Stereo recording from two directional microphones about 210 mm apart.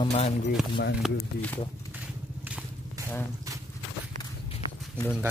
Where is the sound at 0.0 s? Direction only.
30° left (ahead or behind).